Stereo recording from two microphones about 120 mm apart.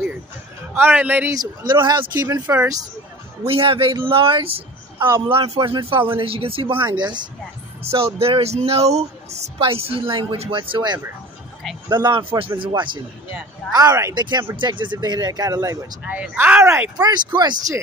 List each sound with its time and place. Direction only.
0.7 s speech: 15° right (ahead or behind)
1.3 s speech: 35° right (ahead or behind)
2.4 s speech: 15° right (ahead or behind)
3.4 s speech: 50° right (ahead or behind); by 7.2 s 35° right (ahead or behind)
7.8 s speech: 55° right (ahead or behind)
13.7 s speech: 25° right (ahead or behind)
14.1 s speech: 40° right (ahead or behind)
16.0 s speech: 10° right (ahead or behind)
16.6 s speech: 20° right (ahead or behind)
16.9 s speech: 35° right (ahead or behind)